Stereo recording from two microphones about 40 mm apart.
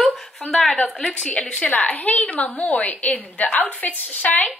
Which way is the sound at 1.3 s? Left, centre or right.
Left.